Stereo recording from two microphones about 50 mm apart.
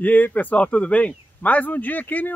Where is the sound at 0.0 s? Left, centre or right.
Left.